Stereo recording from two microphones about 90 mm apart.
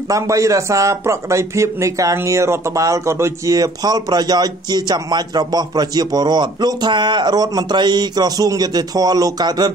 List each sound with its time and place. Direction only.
0.1 s speech: 35° right (ahead or behind)
3.5 s a man's voice: 45° right (ahead or behind)